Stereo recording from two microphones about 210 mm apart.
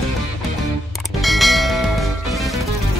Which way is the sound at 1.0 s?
Centre (ahead or behind).